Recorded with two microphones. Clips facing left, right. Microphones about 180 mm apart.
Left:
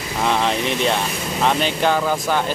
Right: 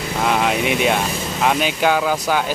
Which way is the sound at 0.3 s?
10° right (ahead or behind).